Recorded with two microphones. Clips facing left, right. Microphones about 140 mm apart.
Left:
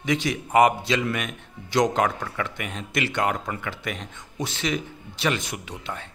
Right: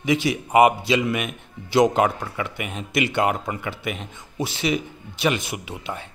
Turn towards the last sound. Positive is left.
turn(degrees=-5)  # may be behind; listen again after turning